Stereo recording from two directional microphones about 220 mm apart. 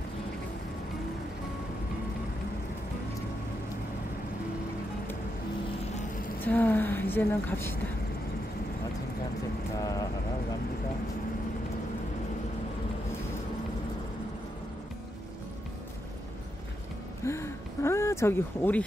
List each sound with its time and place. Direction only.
6.4 s a woman's voice: 10° left (ahead or behind)
9.8 s vehicle: 15° left (ahead or behind)
17.2 s a sound: 10° left (ahead or behind)